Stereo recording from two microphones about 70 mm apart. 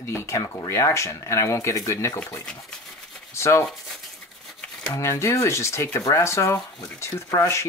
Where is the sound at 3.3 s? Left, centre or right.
Left.